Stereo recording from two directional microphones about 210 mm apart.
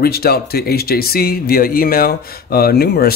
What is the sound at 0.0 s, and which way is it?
Speech, 45° left (ahead or behind).